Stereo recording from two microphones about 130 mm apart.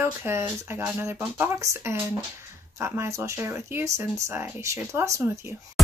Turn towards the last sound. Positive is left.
turn(degrees=-20)  # may be behind; listen again after turning